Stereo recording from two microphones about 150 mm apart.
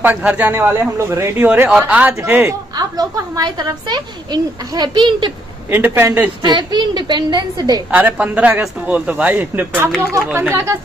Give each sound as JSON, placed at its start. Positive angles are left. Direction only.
{"t": 0.0, "sound": "a man's voice", "side_deg": -10}
{"t": 2.7, "sound": "a woman's voice", "side_deg": -25}
{"t": 5.7, "sound": "a man's voice", "side_deg": -15}
{"t": 6.4, "sound": "a woman's voice", "side_deg": -30}
{"t": 7.9, "sound": "a man's voice", "side_deg": -10}